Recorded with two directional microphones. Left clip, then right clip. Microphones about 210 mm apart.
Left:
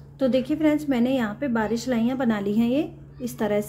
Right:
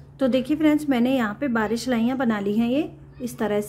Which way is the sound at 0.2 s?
15° right (ahead or behind).